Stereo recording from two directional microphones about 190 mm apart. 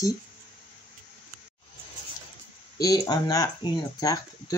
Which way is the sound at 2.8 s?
20° left (ahead or behind).